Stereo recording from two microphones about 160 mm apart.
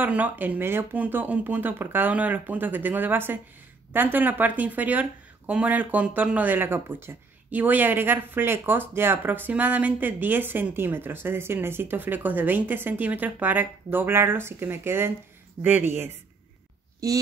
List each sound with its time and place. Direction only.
0.0 s speech: 10° right (ahead or behind)
17.0 s speech: 20° right (ahead or behind)